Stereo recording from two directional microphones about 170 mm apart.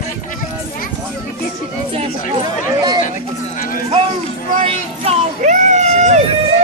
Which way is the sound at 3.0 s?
50° left (ahead or behind).